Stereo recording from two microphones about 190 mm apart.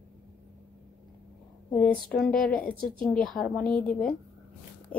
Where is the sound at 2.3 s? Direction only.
50° left (ahead or behind).